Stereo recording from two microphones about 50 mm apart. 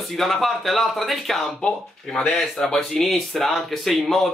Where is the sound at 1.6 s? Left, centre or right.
Centre.